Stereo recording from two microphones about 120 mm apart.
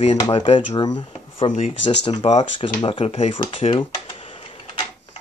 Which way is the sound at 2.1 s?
65° left (ahead or behind).